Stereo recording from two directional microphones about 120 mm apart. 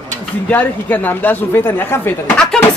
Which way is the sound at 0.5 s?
15° left (ahead or behind).